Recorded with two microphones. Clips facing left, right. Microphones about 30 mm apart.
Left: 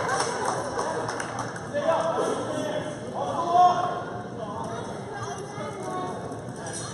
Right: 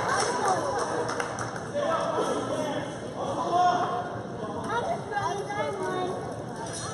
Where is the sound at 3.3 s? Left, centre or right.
Centre.